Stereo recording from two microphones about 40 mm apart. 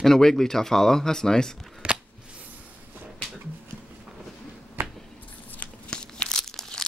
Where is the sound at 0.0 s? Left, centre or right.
Centre.